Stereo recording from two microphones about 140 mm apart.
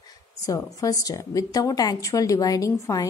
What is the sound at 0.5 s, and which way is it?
A woman's voice, 25° left (ahead or behind).